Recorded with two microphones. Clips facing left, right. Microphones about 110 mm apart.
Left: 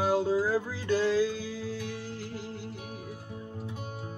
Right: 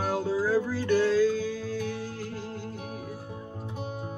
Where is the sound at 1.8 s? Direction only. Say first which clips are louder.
Right 4 dB; 55° right (ahead or behind).